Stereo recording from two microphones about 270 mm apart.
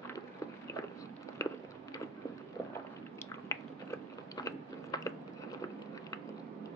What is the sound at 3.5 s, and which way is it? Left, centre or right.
Biting, centre.